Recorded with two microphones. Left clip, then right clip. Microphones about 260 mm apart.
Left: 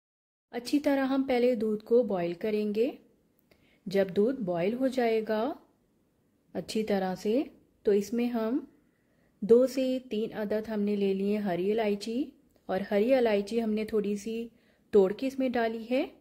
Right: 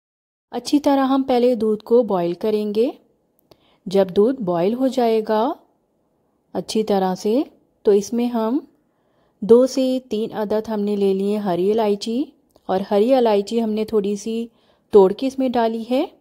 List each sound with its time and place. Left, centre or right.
0.5 s a woman's voice: right